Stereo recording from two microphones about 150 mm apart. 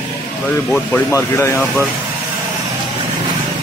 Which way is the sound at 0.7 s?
15° left (ahead or behind).